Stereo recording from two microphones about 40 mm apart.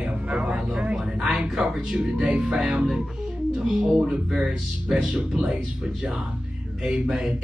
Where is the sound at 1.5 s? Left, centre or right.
Centre.